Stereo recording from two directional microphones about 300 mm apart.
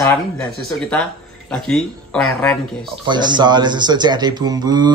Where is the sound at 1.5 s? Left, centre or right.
Centre.